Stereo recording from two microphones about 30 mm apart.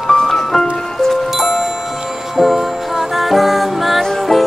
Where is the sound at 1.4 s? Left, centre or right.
Centre.